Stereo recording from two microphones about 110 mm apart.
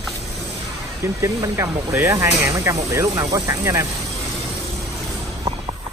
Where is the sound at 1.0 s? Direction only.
25° right (ahead or behind).